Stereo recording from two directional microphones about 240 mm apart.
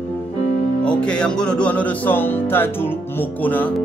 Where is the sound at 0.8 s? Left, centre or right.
Centre.